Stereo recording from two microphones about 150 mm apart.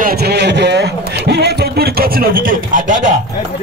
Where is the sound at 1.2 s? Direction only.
90° right; by 3.2 s 60° right (ahead or behind).